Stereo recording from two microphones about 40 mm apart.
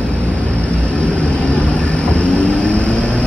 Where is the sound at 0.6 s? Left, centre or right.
Left.